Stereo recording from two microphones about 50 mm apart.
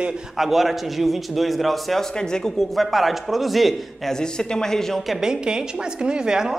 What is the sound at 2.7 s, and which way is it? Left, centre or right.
A man's voice, centre.